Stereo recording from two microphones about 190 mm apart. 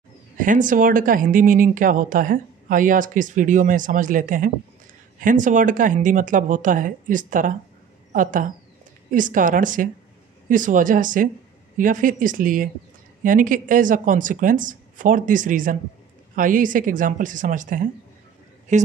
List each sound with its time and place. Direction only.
0.4 s a woman's voice: 45° right (ahead or behind)